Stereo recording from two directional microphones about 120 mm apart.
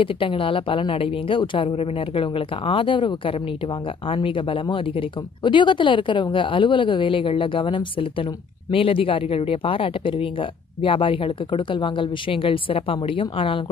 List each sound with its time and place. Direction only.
0.0 s speech: 45° left (ahead or behind)